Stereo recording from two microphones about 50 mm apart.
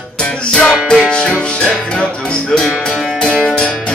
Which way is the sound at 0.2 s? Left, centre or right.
Left.